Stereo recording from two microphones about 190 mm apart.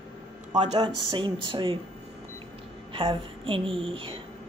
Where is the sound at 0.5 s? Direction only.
35° right (ahead or behind).